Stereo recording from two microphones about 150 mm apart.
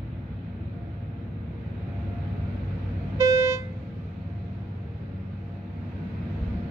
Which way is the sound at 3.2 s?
20° right (ahead or behind).